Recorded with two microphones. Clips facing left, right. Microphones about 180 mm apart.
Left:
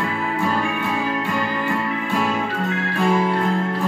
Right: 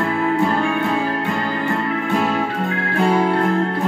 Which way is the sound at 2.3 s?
55° right (ahead or behind).